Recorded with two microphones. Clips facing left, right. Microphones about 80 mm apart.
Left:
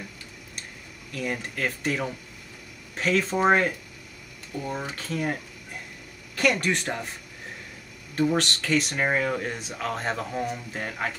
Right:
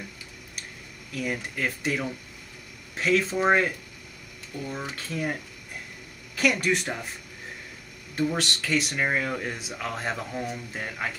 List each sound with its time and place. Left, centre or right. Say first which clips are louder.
1.1 s speech: even; centre
4.6 s speech: left 3 dB; centre
8.2 s speech: left 3 dB; centre